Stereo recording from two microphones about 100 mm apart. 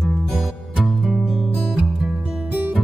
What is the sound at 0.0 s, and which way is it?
Music, centre (ahead or behind).